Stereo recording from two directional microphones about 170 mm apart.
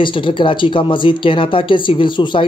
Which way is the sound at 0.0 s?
30° left (ahead or behind).